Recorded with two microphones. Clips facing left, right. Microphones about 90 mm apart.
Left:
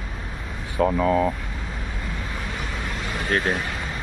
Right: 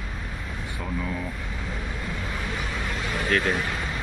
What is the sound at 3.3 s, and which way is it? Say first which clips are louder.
Speech: left 1 dB; 30° left (ahead or behind).